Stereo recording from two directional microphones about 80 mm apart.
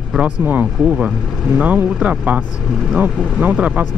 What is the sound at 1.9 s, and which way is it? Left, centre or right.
Speech, centre.